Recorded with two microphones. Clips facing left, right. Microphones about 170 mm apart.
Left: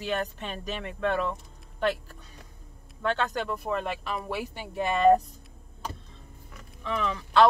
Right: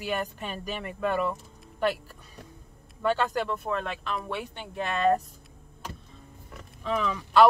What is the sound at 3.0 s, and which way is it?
Speech, 5° right (ahead or behind).